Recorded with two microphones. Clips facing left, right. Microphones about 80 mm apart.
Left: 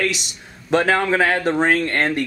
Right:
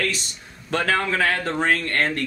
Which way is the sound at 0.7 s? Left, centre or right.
Left.